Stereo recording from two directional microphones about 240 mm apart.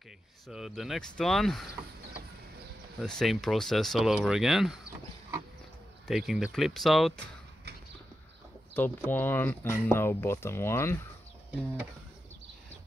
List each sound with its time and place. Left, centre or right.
0.5 s speech: centre
3.0 s speech: centre
6.0 s speech: centre
8.7 s speech: centre